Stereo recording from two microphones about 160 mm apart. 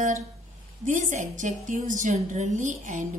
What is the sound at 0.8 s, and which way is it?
A woman's voice, 50° right (ahead or behind).